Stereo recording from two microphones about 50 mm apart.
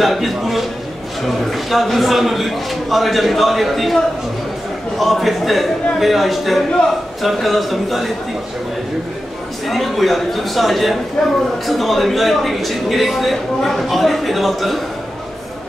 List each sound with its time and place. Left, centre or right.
0.0 s a man's voice: centre
9.7 s a man's voice: centre
11.2 s a man's voice: centre